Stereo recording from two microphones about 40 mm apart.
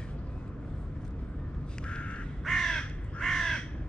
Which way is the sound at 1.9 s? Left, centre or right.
Left.